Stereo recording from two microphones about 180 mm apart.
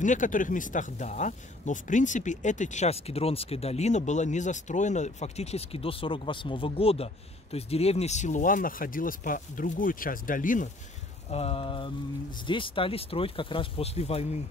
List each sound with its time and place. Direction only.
0.0 s speech: 45° left (ahead or behind)
11.2 s speech: 35° left (ahead or behind)